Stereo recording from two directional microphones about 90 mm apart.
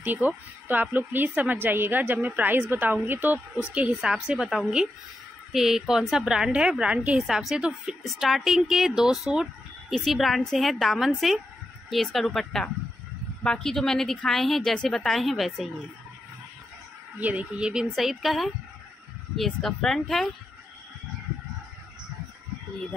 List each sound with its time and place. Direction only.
0.0 s a woman's voice: 20° right (ahead or behind); by 15.7 s centre (ahead or behind)
17.2 s a woman's voice: 15° right (ahead or behind); by 20.3 s 5° left (ahead or behind)